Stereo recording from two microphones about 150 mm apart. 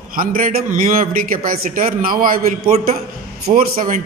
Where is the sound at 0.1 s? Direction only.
70° right (ahead or behind).